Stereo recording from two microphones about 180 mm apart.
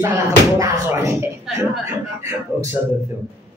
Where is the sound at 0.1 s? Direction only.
15° right (ahead or behind).